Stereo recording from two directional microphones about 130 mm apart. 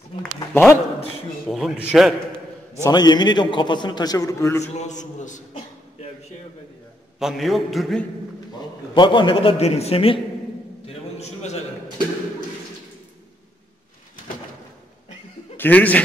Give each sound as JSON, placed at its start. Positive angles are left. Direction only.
{"t": 0.2, "sound": "a sound", "side_deg": 15}
{"t": 1.5, "sound": "a man's voice", "side_deg": -5}
{"t": 2.8, "sound": "a man's voice", "side_deg": 30}
{"t": 4.7, "sound": "a man's voice", "side_deg": 65}
{"t": 7.2, "sound": "a man's voice", "side_deg": 0}
{"t": 8.5, "sound": "a man's voice", "side_deg": 35}
{"t": 10.9, "sound": "a sound", "side_deg": 60}
{"t": 15.5, "sound": "speech", "side_deg": 15}